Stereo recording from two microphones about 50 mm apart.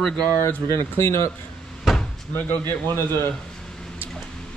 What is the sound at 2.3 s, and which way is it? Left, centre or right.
Speech, left.